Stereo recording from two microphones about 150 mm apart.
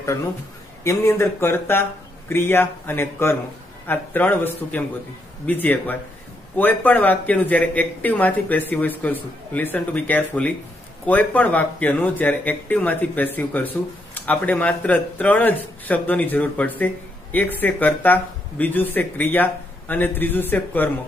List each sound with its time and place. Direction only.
0.8 s speech: 15° left (ahead or behind)